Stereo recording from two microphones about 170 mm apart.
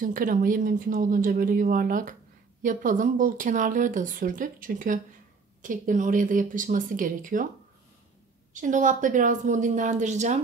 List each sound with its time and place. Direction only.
0.0 s speech: 55° right (ahead or behind)
8.5 s speech: 45° right (ahead or behind)